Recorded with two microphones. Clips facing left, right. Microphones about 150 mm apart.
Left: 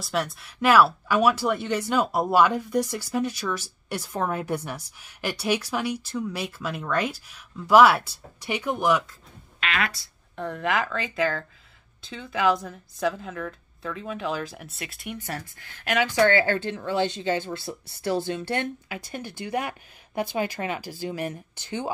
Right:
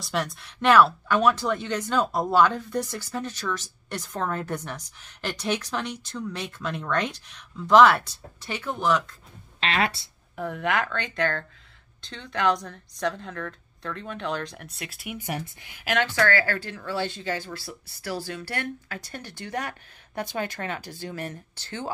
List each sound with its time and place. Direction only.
0.0 s a woman's voice: centre (ahead or behind)
9.6 s speech: 30° right (ahead or behind)
10.3 s a woman's voice: centre (ahead or behind)
15.8 s a woman's voice: centre (ahead or behind)
16.1 s a woman's voice: 20° left (ahead or behind)